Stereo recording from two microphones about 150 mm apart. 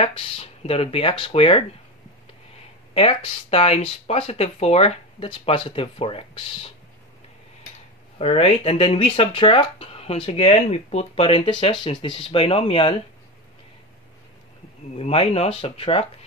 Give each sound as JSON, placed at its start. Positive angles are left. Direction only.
{"t": 0.0, "sound": "speech", "side_deg": 40}
{"t": 2.9, "sound": "speech", "side_deg": 40}
{"t": 8.2, "sound": "speech", "side_deg": 40}
{"t": 15.0, "sound": "speech", "side_deg": 40}